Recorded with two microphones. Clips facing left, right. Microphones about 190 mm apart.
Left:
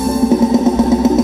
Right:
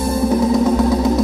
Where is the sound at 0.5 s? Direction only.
20° left (ahead or behind).